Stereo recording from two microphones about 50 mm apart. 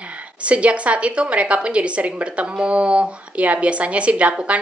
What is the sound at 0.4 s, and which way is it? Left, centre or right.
A woman's voice, right.